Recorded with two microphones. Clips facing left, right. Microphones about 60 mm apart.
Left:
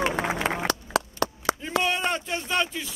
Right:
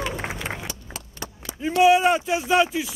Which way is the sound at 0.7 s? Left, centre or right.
Left.